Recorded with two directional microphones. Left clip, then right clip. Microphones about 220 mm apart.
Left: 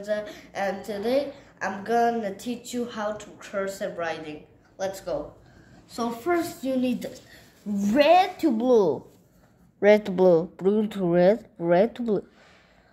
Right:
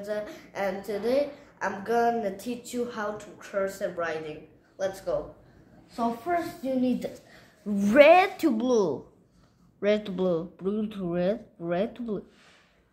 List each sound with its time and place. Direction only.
0.0 s a woman's voice: 10° right (ahead or behind)
6.6 s speech: centre (ahead or behind)
7.7 s a woman's voice: 25° right (ahead or behind)
8.1 s speech: 5° right (ahead or behind)
8.5 s a woman's voice: 15° left (ahead or behind)
9.8 s speech: 35° left (ahead or behind)